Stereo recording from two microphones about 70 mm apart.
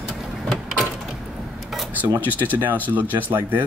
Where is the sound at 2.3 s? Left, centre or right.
Right.